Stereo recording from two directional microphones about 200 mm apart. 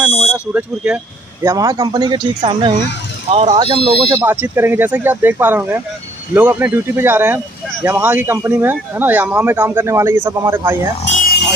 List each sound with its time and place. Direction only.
0.3 s speech: 5° right (ahead or behind); by 4.2 s 25° right (ahead or behind)
4.2 s speech: 10° right (ahead or behind)
11.1 s a sound: 40° left (ahead or behind)